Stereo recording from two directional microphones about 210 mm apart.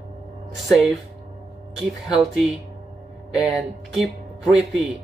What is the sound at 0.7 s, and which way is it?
Speech, centre (ahead or behind).